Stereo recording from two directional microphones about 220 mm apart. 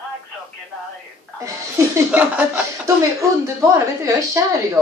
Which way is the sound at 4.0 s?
15° right (ahead or behind).